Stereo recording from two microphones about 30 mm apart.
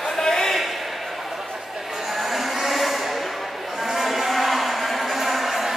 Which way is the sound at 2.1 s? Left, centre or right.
Centre.